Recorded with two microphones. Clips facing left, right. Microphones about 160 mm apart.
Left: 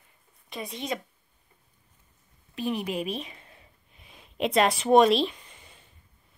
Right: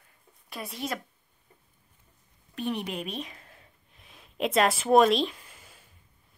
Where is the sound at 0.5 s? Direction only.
5° right (ahead or behind).